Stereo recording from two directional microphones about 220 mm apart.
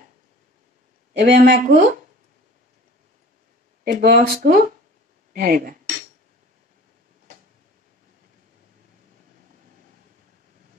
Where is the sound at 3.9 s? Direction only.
40° right (ahead or behind).